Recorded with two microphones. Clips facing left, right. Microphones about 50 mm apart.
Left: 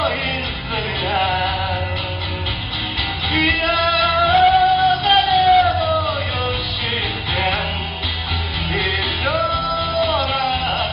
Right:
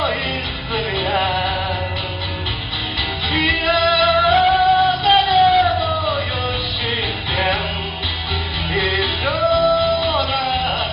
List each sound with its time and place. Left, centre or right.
0.7 s music: centre
3.4 s music: centre
7.3 s music: centre
8.7 s music: centre
10.0 s music: left